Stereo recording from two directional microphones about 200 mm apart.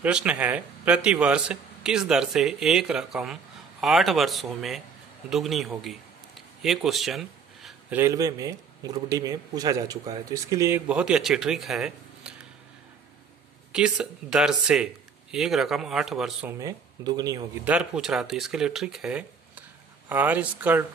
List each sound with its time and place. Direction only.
0.0 s speech: 5° right (ahead or behind)
5.3 s a sound: centre (ahead or behind)
8.0 s speech: 15° right (ahead or behind)
13.7 s speech: 5° right (ahead or behind)
16.5 s speech: 15° right (ahead or behind)
17.7 s speech: 5° right (ahead or behind)